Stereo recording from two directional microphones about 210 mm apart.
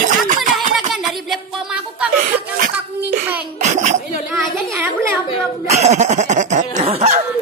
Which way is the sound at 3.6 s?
35° right (ahead or behind).